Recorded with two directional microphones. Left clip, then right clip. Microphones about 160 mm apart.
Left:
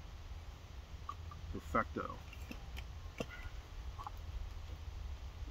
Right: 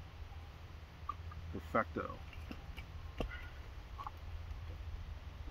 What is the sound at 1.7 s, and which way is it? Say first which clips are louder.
Speech: right 1 dB; centre (ahead or behind).